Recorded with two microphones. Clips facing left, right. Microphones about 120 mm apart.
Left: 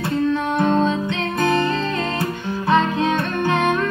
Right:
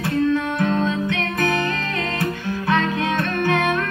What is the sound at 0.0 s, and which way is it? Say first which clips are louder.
Music: even; 30° left (ahead or behind).